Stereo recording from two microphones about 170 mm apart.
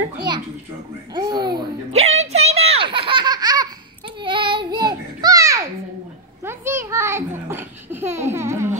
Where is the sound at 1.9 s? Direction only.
40° right (ahead or behind); by 5.7 s 20° right (ahead or behind).